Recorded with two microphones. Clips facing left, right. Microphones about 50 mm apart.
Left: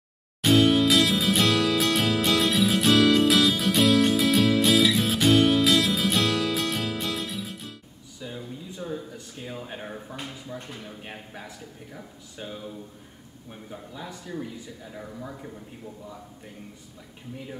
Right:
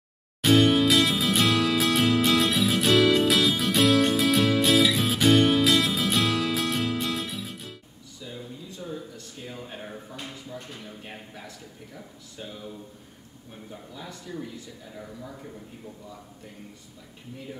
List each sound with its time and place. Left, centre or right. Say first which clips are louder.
0.4 s music: even; centre
8.7 s speech: left 3 dB; centre